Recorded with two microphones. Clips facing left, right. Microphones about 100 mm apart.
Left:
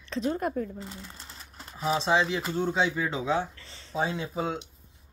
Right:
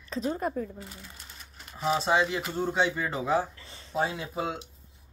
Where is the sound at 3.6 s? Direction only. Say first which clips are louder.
Right 1 dB; 15° right (ahead or behind).